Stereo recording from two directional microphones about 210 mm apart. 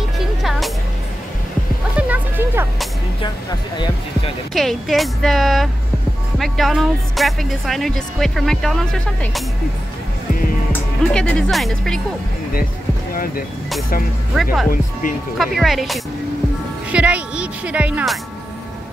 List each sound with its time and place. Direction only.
0.4 s music: centre (ahead or behind)
2.0 s music: 5° right (ahead or behind)
3.7 s speech: 20° left (ahead or behind)
4.6 s speech: centre (ahead or behind)
10.7 s speech: 5° left (ahead or behind)
14.3 s speech: centre (ahead or behind)
14.7 s speech: 40° left (ahead or behind)
15.3 s speech: centre (ahead or behind)